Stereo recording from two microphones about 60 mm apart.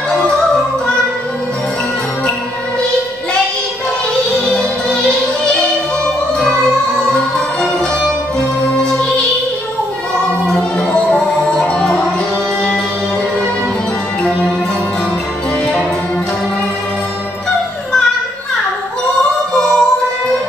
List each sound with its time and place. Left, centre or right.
4.5 s music: centre
7.1 s music: centre
11.1 s music: centre
19.6 s music: centre